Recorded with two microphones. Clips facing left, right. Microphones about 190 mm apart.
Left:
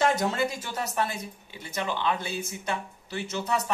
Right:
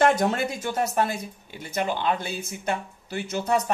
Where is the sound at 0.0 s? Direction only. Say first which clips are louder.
Right 4 dB; 60° right (ahead or behind).